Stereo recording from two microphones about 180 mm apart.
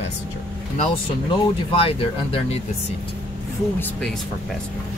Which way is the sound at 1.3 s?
30° left (ahead or behind).